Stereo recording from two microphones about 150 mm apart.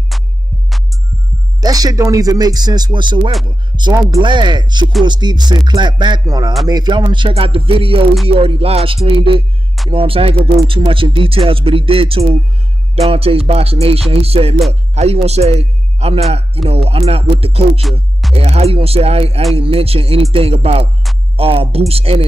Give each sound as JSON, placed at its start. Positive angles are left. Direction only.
{"t": 0.1, "sound": "music", "side_deg": 0}
{"t": 1.6, "sound": "a man's voice", "side_deg": -25}